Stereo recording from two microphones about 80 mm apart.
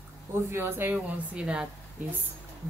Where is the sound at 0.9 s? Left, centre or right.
Centre.